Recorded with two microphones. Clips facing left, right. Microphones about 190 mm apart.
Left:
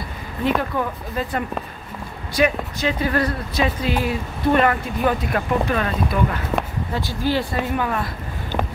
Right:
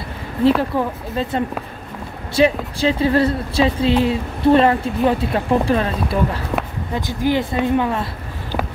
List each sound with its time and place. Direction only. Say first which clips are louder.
0.4 s speech: right 5 dB; 30° right (ahead or behind)
6.9 s speech: right 5 dB; 20° right (ahead or behind)